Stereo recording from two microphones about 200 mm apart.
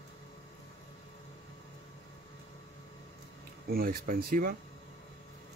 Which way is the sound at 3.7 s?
50° right (ahead or behind).